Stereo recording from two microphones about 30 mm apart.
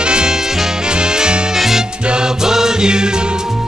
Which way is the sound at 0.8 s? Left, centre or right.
Right.